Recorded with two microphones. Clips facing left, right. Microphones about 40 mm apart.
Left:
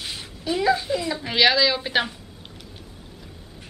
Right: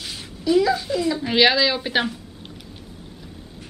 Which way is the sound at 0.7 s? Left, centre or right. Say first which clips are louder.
Right 1 dB; centre.